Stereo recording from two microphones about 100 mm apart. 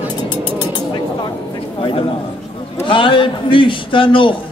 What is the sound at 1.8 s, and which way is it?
A man's voice, 60° left (ahead or behind).